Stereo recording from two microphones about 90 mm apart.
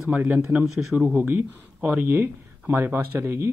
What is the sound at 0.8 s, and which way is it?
Speech, 10° right (ahead or behind).